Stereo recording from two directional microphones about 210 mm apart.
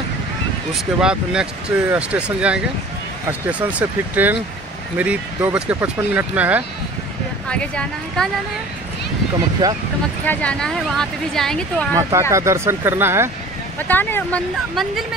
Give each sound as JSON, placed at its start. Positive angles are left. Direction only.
{"t": 0.7, "sound": "speech", "side_deg": -5}
{"t": 7.4, "sound": "speech", "side_deg": 5}
{"t": 9.6, "sound": "speech", "side_deg": -15}
{"t": 10.2, "sound": "speech", "side_deg": 5}
{"t": 11.9, "sound": "speech", "side_deg": -15}
{"t": 13.7, "sound": "speech", "side_deg": 10}